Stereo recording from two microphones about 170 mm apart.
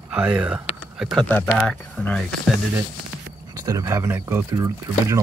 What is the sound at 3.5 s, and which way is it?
Speech, 20° right (ahead or behind).